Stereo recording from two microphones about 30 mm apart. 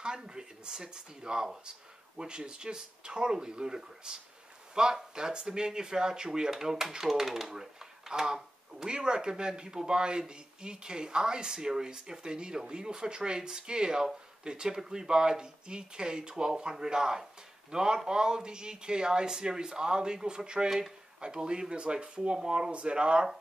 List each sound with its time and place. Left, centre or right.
0.0 s speech: right
6.5 s speech: centre
22.7 s speech: right